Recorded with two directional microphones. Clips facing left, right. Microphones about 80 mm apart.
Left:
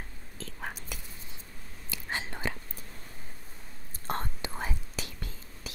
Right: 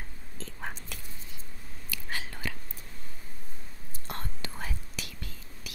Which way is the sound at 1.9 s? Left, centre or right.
Left.